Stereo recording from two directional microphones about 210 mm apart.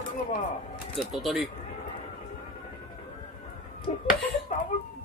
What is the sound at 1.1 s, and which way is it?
Speech, centre (ahead or behind).